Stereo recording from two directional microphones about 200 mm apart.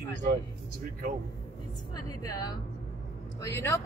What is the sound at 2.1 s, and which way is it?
Speech, 20° left (ahead or behind).